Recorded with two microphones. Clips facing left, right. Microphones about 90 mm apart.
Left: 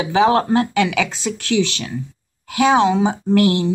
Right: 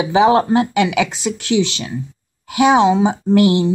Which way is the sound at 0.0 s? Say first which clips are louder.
Right 2 dB; 15° right (ahead or behind).